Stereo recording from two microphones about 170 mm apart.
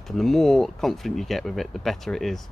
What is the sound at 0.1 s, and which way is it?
Speech, centre (ahead or behind).